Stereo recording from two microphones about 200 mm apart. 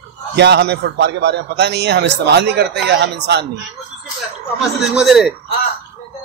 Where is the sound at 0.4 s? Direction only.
55° right (ahead or behind).